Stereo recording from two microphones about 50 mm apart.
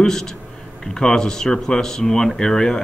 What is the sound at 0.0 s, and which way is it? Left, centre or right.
A man's voice, centre.